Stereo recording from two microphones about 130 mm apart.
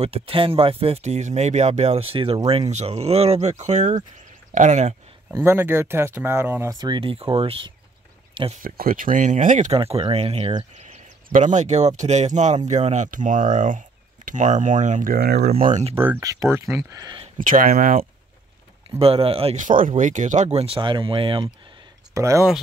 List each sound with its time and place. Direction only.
0.0 s speech: 45° right (ahead or behind); by 4.9 s 65° right (ahead or behind)
5.3 s speech: 15° right (ahead or behind)
6.7 s speech: 35° right (ahead or behind)
8.6 s speech: 90° right; by 9.8 s 70° right (ahead or behind)
9.8 s speech: 50° right (ahead or behind)
10.8 s speech: 70° right (ahead or behind)
16.2 s speech: 25° right (ahead or behind)
17.4 s speech: 90° right
18.9 s speech: 45° right (ahead or behind)
19.5 s speech: 85° right
20.0 s speech: 75° right (ahead or behind); by 21.5 s 40° right (ahead or behind)
22.1 s speech: 25° right (ahead or behind)